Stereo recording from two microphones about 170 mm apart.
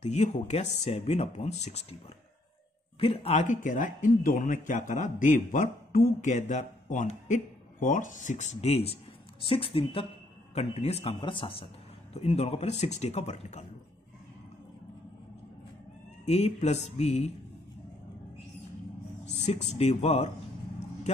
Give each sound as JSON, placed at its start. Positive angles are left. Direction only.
{"t": 0.0, "sound": "a man's voice", "side_deg": 40}
{"t": 3.0, "sound": "a man's voice", "side_deg": 35}
{"t": 11.1, "sound": "a man's voice", "side_deg": 30}
{"t": 16.3, "sound": "a man's voice", "side_deg": 40}
{"t": 19.2, "sound": "a man's voice", "side_deg": 40}